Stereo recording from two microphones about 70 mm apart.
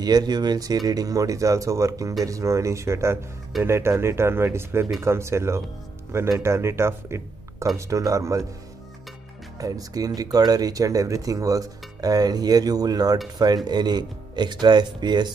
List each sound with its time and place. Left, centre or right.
0.0 s speech: right
7.7 s speech: right
9.6 s speech: right
13.7 s speech: right